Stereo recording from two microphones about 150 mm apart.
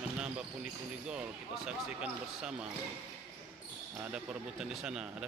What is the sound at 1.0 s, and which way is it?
Speech, 5° right (ahead or behind).